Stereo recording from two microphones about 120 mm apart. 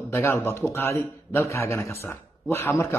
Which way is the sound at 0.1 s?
20° left (ahead or behind).